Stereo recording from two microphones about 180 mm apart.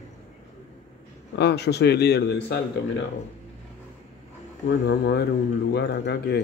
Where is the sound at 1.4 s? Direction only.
65° left (ahead or behind).